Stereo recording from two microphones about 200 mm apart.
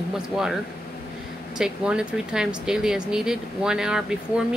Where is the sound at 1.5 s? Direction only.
5° right (ahead or behind).